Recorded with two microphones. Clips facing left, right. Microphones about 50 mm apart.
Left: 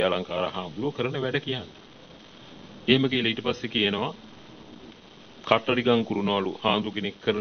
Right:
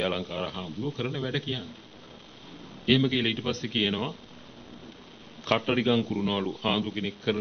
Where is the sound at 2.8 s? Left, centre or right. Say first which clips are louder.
Left 2 dB; centre.